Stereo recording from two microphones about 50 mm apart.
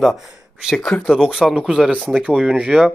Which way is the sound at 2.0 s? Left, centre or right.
Right.